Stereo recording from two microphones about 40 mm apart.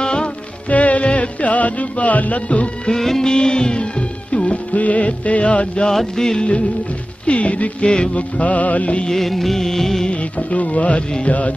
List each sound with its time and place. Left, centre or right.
0.0 s music: left
0.7 s music: left
2.9 s music: centre; by 5.9 s left
5.9 s music: centre
7.2 s music: left
7.8 s music: left
8.2 s music: left
9.1 s music: centre
10.0 s music: left